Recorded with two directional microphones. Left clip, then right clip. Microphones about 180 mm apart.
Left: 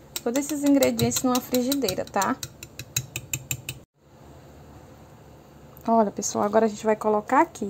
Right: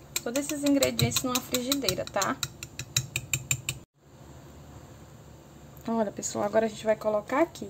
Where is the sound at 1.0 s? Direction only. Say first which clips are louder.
Left 5 dB; 30° left (ahead or behind).